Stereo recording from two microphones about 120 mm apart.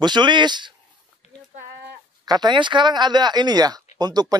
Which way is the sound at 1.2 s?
65° left (ahead or behind).